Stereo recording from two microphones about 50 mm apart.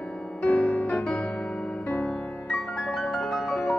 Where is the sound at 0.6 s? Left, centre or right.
Left.